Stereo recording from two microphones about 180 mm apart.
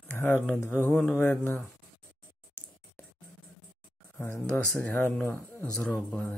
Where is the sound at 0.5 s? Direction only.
15° left (ahead or behind).